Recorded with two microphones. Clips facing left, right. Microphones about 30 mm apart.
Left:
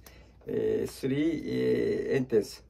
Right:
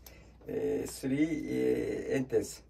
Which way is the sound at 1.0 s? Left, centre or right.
Left.